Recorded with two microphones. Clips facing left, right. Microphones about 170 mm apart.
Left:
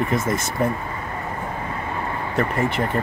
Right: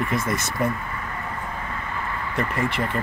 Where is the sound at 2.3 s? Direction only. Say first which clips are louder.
Left 3 dB; 35° left (ahead or behind).